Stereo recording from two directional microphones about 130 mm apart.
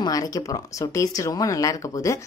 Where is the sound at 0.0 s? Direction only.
30° left (ahead or behind).